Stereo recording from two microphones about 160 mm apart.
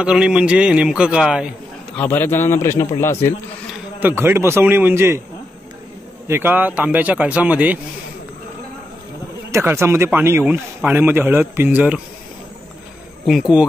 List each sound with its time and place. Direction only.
0.0 s a man's voice: 5° right (ahead or behind)
2.0 s a man's voice: 15° left (ahead or behind)
4.0 s a man's voice: 15° right (ahead or behind)
6.2 s a man's voice: 15° right (ahead or behind)
9.5 s a man's voice: 15° right (ahead or behind)
13.3 s a man's voice: 5° right (ahead or behind)